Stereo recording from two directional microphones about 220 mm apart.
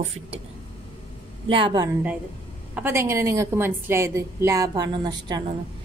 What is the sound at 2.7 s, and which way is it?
A woman's voice, 10° right (ahead or behind).